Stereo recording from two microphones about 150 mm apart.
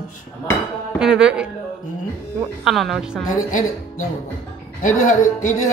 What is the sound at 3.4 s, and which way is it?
Speech, 60° left (ahead or behind).